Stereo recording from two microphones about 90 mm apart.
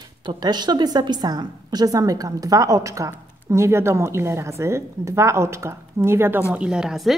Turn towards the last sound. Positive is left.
turn(degrees=-5)  # may be behind; listen again after turning